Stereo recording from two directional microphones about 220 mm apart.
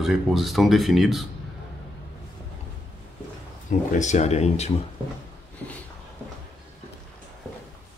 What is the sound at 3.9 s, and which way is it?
Speech, 35° left (ahead or behind).